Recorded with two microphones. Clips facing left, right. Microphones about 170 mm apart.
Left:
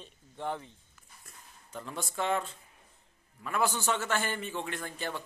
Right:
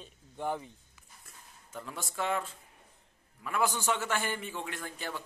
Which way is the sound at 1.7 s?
5° right (ahead or behind).